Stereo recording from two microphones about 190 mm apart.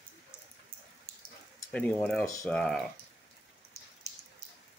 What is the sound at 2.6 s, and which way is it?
Speech, 5° left (ahead or behind).